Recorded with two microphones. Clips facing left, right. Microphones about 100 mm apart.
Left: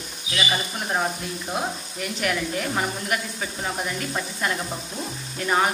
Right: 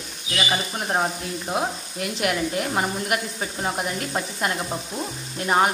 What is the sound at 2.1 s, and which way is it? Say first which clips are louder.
Speech: right 2 dB; 25° right (ahead or behind).